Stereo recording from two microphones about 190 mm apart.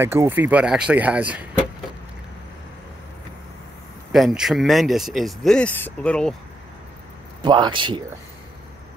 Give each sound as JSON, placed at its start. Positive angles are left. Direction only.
{"t": 0.0, "sound": "speech", "side_deg": -10}
{"t": 4.1, "sound": "speech", "side_deg": 0}
{"t": 7.4, "sound": "a man's voice", "side_deg": -25}